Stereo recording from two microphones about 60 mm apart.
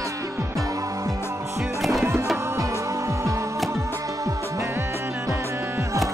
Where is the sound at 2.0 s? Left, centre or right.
Right.